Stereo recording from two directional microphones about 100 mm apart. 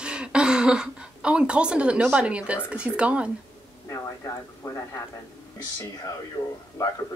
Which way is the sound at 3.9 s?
35° left (ahead or behind).